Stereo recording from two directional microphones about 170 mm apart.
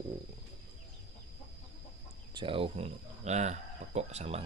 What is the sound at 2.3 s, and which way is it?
Speech, 30° right (ahead or behind).